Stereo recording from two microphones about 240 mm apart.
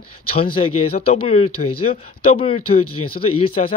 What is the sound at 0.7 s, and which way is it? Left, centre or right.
Speech, left.